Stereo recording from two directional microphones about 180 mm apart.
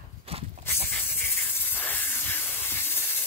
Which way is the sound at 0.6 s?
10° left (ahead or behind).